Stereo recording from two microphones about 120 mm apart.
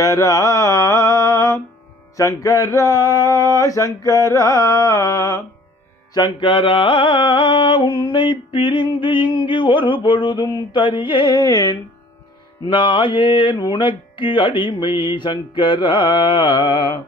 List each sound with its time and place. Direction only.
0.0 s mantra: 30° left (ahead or behind)
2.1 s male singing: 25° left (ahead or behind)
6.1 s carnatic music: 40° left (ahead or behind)
12.6 s carnatic music: 40° left (ahead or behind)